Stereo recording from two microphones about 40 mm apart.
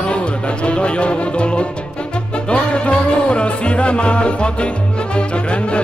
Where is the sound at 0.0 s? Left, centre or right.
Left.